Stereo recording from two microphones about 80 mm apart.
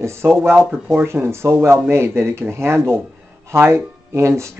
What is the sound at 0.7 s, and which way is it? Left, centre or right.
Speech, centre.